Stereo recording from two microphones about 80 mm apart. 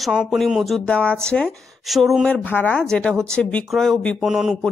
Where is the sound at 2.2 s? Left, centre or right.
Centre.